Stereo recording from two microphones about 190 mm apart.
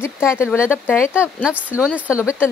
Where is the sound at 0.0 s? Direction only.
15° left (ahead or behind).